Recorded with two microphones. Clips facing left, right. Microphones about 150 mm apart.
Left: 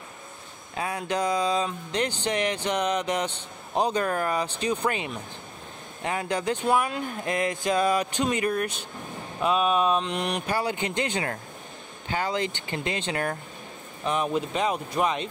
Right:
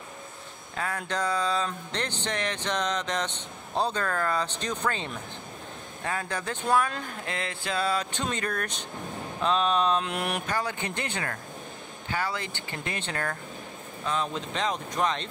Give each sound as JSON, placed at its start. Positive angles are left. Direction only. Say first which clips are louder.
{"t": 0.7, "sound": "speech", "louder": "left 3 dB", "side_deg": 15}
{"t": 10.0, "sound": "mantra", "louder": "left 2 dB", "side_deg": -5}
{"t": 10.4, "sound": "speech", "louder": "left 3 dB", "side_deg": 15}